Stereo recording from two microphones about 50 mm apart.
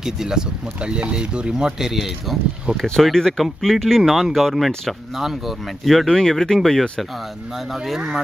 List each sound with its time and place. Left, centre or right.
0.0 s speech: centre
2.8 s speech: centre
7.5 s speech: centre